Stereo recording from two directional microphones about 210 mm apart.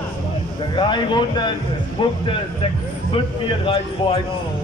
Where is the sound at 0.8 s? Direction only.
20° left (ahead or behind).